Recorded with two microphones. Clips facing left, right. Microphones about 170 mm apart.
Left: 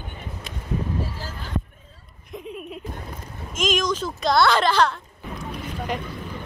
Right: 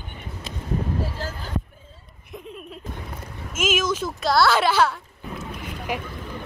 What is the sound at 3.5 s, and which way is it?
Speech, 5° right (ahead or behind).